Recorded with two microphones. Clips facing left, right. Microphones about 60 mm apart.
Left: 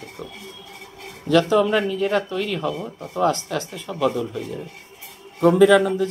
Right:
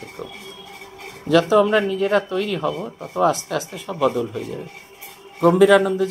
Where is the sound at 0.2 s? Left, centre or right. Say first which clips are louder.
Right 3 dB; centre.